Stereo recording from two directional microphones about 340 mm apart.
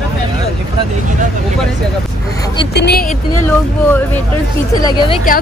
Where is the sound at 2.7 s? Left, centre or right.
Left.